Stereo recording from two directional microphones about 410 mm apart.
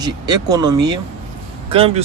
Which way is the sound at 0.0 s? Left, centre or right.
Centre.